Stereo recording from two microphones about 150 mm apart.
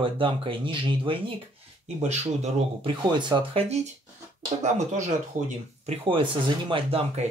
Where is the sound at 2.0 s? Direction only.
50° right (ahead or behind).